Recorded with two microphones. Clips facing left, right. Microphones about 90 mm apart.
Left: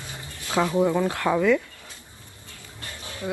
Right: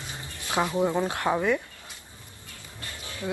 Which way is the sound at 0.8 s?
20° right (ahead or behind).